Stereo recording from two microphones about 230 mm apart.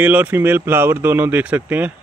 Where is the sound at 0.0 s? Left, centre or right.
Centre.